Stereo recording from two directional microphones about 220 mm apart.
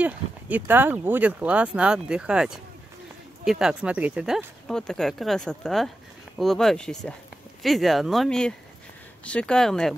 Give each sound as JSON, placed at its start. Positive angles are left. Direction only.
{"t": 0.0, "sound": "speech", "side_deg": -10}